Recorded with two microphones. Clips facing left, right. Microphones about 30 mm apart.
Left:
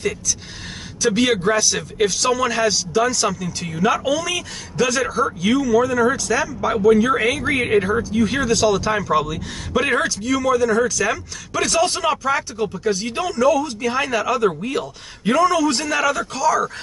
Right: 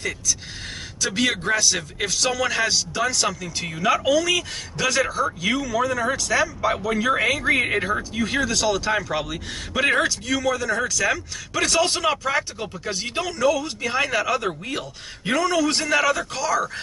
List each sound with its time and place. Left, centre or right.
1.0 s speech: centre
13.2 s speech: centre